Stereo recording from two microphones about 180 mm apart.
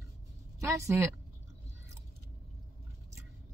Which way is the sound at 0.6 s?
15° right (ahead or behind).